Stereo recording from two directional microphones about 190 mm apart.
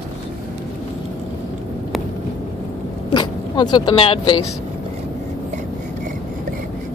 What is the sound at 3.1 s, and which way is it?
Speech, 20° left (ahead or behind).